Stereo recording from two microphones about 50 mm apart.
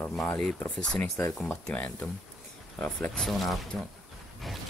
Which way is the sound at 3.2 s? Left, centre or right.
Centre.